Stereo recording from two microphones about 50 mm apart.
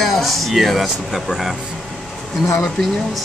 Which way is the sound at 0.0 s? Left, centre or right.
Centre.